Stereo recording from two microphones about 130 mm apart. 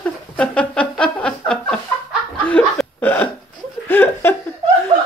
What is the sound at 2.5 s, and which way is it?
Chuckle, 10° left (ahead or behind).